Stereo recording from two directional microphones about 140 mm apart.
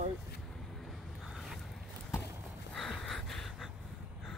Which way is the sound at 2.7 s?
Centre (ahead or behind).